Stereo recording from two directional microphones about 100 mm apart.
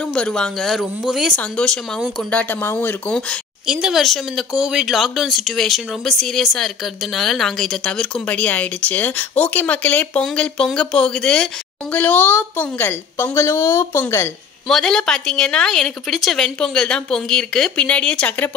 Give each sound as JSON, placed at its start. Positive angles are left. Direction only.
{"t": 0.0, "sound": "speech", "side_deg": 10}
{"t": 1.3, "sound": "a woman's voice", "side_deg": 10}
{"t": 2.6, "sound": "a woman's voice", "side_deg": 20}
{"t": 3.6, "sound": "a woman's voice", "side_deg": -5}
{"t": 14.7, "sound": "a woman's voice", "side_deg": 5}